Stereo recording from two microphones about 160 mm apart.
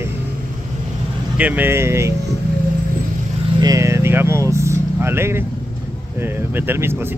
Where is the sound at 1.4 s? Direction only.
10° right (ahead or behind).